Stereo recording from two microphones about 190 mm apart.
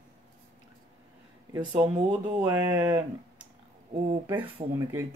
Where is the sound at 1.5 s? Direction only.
20° right (ahead or behind).